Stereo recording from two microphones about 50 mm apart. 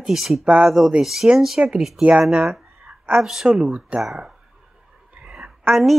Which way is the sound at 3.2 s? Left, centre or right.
Centre.